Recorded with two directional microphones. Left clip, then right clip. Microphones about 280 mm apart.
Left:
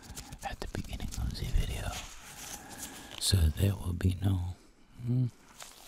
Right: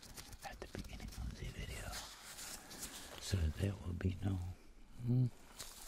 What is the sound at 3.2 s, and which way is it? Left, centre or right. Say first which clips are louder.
Speech: left 12 dB; left.